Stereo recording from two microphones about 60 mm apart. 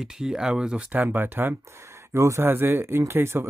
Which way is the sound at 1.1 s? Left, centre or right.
Right.